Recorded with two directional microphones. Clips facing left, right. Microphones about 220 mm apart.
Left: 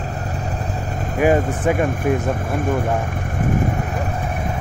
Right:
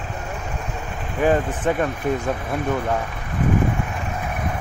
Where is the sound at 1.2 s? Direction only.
15° left (ahead or behind).